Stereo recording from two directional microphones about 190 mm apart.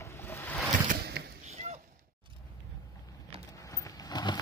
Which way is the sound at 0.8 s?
55° right (ahead or behind).